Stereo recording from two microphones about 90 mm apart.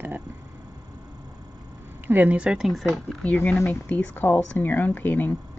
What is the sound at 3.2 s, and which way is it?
Speech, 20° left (ahead or behind).